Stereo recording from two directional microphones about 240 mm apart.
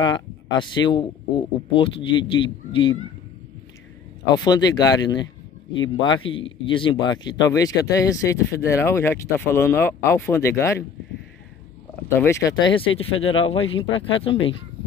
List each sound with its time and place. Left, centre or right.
0.0 s speech: centre
4.4 s speech: centre
12.1 s speech: centre